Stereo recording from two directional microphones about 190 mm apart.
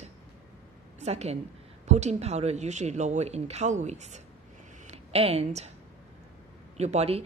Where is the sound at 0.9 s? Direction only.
35° right (ahead or behind).